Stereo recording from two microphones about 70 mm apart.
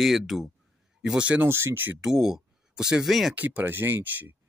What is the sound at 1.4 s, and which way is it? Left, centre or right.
Speech, right.